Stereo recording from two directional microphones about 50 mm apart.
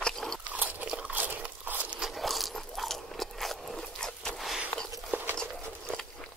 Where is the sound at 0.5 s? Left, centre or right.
Right.